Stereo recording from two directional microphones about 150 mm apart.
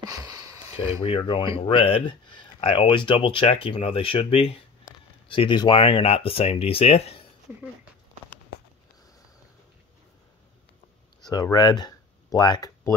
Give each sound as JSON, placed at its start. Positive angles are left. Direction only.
{"t": 0.0, "sound": "sniff", "side_deg": -25}
{"t": 1.0, "sound": "speech", "side_deg": 35}
{"t": 11.2, "sound": "speech", "side_deg": 25}